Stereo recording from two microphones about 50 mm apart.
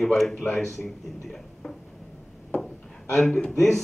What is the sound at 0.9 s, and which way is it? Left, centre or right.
Speech, centre.